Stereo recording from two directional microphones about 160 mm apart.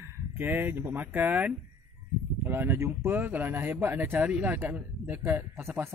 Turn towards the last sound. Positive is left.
turn(degrees=-15)  # may be behind; listen again after turning